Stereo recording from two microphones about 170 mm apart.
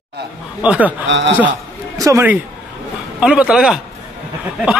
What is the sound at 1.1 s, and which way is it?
Speech, 90° right.